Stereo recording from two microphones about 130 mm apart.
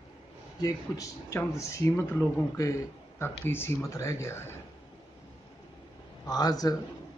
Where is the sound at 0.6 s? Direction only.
25° left (ahead or behind).